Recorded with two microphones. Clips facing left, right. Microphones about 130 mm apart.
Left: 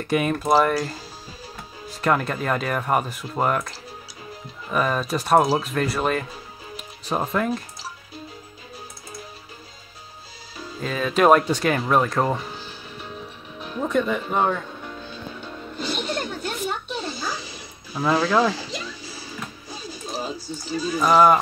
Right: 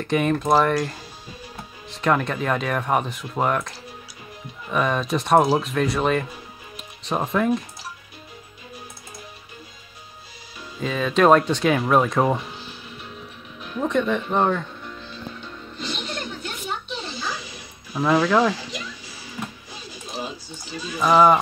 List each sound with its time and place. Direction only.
0.0 s speech: 5° left (ahead or behind)
10.8 s speech: centre (ahead or behind)
13.7 s speech: 5° left (ahead or behind)
15.4 s music: 45° left (ahead or behind)
18.0 s speech: 5° left (ahead or behind)
18.5 s music: 35° left (ahead or behind)
20.2 s speech: 40° left (ahead or behind)
21.0 s speech: 5° left (ahead or behind)